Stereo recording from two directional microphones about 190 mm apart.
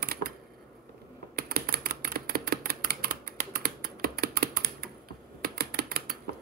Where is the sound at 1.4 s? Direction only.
55° right (ahead or behind).